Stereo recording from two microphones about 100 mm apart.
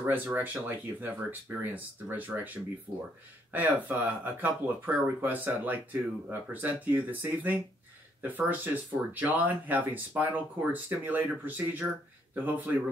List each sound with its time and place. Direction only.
0.0 s speech: 20° right (ahead or behind)